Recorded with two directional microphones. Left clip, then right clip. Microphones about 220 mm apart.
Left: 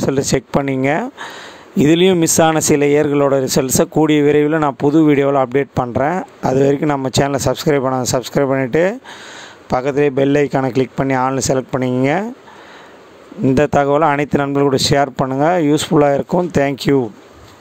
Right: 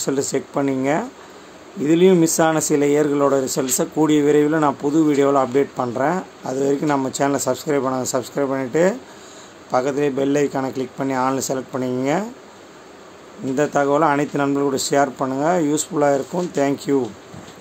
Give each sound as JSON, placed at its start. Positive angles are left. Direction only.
{"t": 0.0, "sound": "speech", "side_deg": 40}
{"t": 13.6, "sound": "speech", "side_deg": 40}